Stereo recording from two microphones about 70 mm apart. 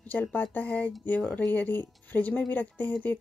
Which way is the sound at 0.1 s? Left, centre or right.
Left.